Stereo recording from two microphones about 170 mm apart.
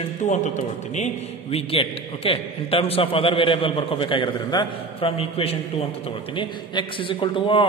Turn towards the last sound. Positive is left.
turn(degrees=30)  # may be behind; listen again after turning